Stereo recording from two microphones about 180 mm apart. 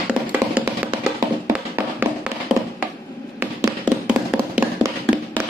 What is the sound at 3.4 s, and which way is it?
Tap, 10° right (ahead or behind).